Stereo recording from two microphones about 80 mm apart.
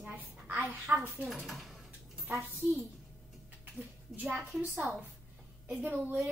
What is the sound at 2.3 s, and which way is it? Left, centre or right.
Speech, right.